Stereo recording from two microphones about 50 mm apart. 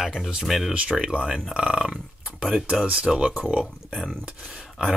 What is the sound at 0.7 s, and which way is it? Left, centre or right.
Speech, centre.